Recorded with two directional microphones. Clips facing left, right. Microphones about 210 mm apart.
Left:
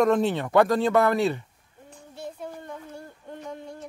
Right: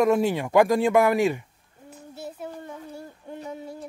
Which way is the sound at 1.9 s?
5° right (ahead or behind).